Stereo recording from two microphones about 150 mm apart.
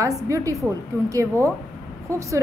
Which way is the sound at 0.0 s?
20° right (ahead or behind).